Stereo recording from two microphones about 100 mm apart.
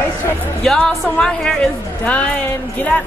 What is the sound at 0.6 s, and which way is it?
A woman's voice, 5° left (ahead or behind).